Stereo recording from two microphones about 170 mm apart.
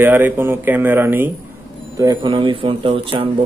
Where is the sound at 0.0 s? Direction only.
10° right (ahead or behind).